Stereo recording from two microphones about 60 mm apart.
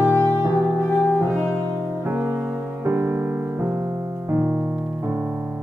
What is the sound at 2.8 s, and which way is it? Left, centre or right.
Music, right.